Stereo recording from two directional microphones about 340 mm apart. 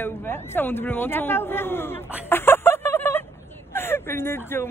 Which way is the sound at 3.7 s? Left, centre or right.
Centre.